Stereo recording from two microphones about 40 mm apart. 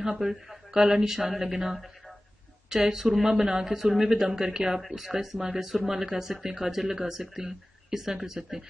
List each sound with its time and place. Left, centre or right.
0.2 s speech: centre
2.7 s speech: centre